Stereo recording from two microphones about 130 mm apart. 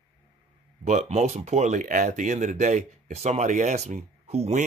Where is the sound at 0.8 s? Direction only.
55° right (ahead or behind).